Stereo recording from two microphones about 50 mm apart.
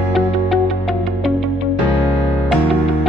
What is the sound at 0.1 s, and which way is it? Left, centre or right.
Music, centre.